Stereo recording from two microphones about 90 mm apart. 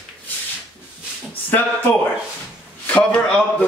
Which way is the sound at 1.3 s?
20° left (ahead or behind).